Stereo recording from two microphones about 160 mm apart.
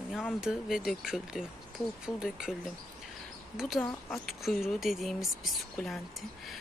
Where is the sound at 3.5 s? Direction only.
Centre (ahead or behind).